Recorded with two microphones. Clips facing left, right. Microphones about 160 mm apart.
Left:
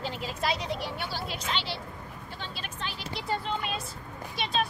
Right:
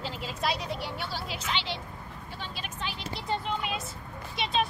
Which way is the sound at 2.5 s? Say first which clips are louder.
Right 2 dB; 10° right (ahead or behind).